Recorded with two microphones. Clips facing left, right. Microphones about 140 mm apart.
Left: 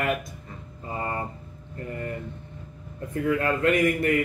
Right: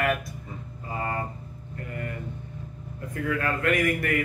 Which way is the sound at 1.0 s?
25° left (ahead or behind).